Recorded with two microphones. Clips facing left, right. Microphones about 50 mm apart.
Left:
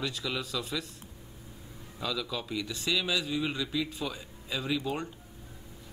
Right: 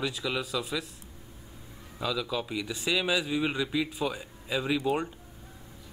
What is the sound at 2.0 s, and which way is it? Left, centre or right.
Speech, centre.